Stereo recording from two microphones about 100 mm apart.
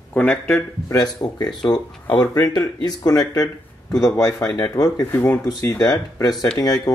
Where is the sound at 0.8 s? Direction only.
40° left (ahead or behind).